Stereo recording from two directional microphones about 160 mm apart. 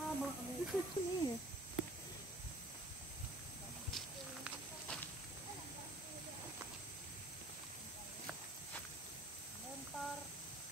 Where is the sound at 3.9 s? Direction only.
Centre (ahead or behind).